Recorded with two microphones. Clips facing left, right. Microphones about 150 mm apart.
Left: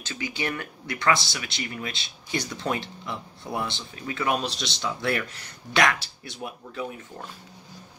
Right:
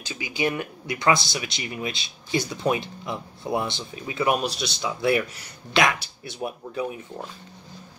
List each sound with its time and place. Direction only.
0.0 s speech: 15° right (ahead or behind)